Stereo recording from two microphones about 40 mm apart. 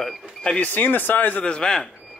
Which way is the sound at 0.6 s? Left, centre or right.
Left.